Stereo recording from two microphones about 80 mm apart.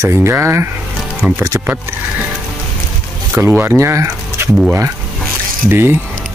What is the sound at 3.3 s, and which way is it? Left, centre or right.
Speech, right.